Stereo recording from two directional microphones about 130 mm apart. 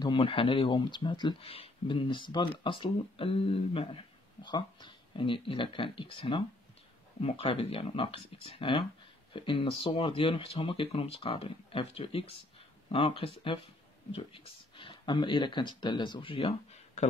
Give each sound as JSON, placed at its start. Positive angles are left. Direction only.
{"t": 0.0, "sound": "speech", "side_deg": 40}
{"t": 1.4, "sound": "speech", "side_deg": 50}